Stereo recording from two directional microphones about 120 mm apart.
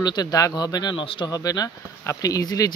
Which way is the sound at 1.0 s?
50° left (ahead or behind).